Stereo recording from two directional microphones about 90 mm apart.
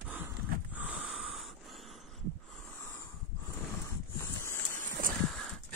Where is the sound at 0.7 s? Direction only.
15° right (ahead or behind).